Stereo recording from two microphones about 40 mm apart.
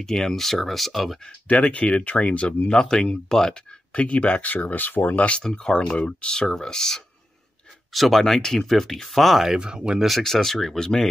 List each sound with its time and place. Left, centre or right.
0.0 s speech: centre
1.5 s speech: left
2.7 s speech: left
3.9 s speech: left
5.3 s speech: centre
7.9 s speech: centre
9.6 s speech: centre
10.0 s speech: centre